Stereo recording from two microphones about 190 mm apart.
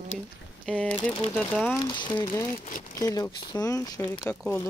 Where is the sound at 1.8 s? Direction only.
25° left (ahead or behind).